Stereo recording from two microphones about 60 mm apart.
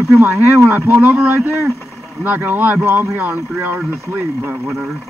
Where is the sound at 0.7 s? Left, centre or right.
Right.